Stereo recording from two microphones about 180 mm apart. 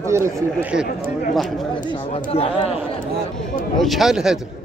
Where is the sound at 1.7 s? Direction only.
30° left (ahead or behind).